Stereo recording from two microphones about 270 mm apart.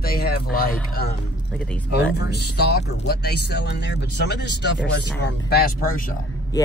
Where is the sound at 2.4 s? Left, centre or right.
Left.